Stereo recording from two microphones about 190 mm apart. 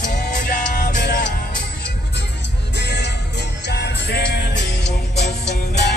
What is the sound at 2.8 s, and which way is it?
Music, 65° left (ahead or behind).